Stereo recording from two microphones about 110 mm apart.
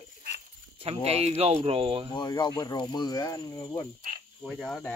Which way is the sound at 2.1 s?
40° left (ahead or behind).